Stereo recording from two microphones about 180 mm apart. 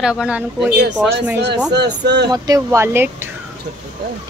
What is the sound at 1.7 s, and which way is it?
Speech, 70° right (ahead or behind).